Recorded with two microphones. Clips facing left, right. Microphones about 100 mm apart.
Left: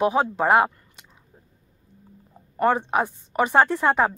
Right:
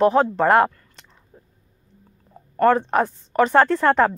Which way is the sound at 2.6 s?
15° left (ahead or behind).